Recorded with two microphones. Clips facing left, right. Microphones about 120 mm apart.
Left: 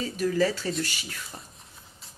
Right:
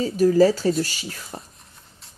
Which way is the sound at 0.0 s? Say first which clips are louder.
Right 9 dB; 35° right (ahead or behind).